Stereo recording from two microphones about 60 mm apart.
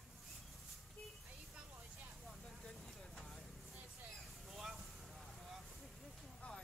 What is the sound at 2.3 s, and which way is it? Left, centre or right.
Vehicle, centre.